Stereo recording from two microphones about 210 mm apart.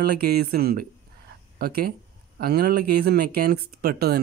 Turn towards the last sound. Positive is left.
turn(degrees=-45)  # may be behind; listen again after turning